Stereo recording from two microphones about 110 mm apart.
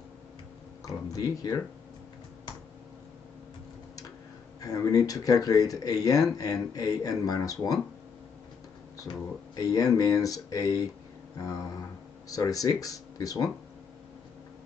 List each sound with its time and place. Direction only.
0.8 s speech: 30° left (ahead or behind)
4.6 s speech: 30° left (ahead or behind)
9.6 s speech: 35° left (ahead or behind)
12.3 s speech: 30° left (ahead or behind)